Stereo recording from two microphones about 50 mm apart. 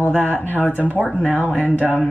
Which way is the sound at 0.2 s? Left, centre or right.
Left.